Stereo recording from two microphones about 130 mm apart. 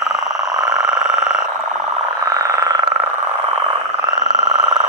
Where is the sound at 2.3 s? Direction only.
25° right (ahead or behind).